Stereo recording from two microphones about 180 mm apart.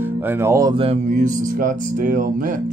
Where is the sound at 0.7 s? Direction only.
35° right (ahead or behind).